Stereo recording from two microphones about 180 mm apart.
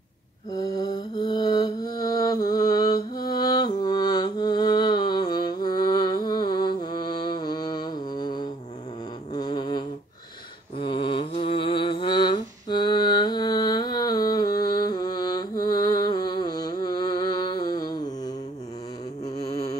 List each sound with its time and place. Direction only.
0.5 s mantra: 20° left (ahead or behind)
3.3 s music: 20° left (ahead or behind)
9.3 s humming: 25° left (ahead or behind)
19.2 s music: 20° left (ahead or behind)